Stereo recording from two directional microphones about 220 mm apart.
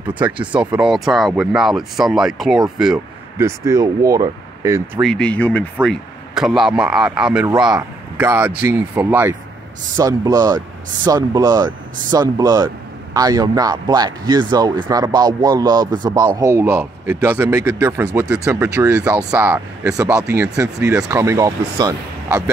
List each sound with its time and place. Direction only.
0.0 s speech: 5° right (ahead or behind)
3.3 s speech: 15° right (ahead or behind)
5.0 s speech: 5° left (ahead or behind); by 22.4 s 15° right (ahead or behind)